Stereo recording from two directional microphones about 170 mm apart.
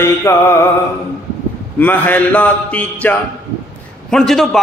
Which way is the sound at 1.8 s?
10° left (ahead or behind).